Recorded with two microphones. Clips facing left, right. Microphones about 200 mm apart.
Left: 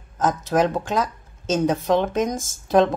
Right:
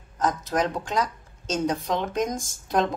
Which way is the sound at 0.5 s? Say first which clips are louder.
Left 7 dB; 65° left (ahead or behind).